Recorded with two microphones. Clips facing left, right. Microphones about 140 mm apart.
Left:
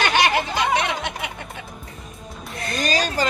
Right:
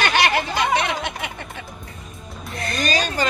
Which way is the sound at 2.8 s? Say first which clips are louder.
Even; 35° left (ahead or behind).